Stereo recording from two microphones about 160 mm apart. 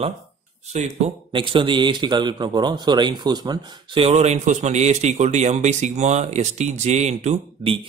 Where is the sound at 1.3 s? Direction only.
30° right (ahead or behind).